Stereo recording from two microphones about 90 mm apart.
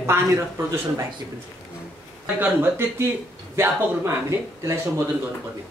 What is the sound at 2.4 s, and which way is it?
A man's voice, 20° right (ahead or behind).